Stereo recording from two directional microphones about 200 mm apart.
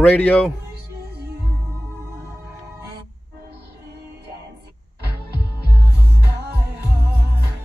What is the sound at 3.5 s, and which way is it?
Music, 55° right (ahead or behind).